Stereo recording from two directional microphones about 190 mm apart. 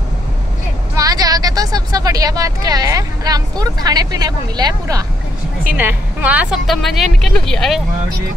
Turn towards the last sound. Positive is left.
turn(degrees=0)  # may be behind; listen again after turning